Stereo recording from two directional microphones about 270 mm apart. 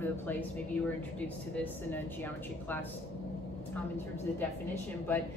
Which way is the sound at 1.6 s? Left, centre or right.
Centre.